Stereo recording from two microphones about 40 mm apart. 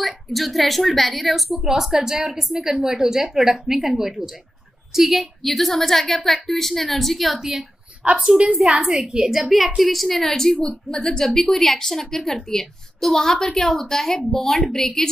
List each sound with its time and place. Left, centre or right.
0.0 s a woman's voice: centre
7.3 s a woman's voice: centre
8.0 s a woman's voice: right
9.8 s a woman's voice: centre